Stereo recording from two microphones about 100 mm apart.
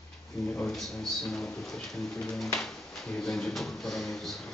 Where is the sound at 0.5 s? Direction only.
5° left (ahead or behind).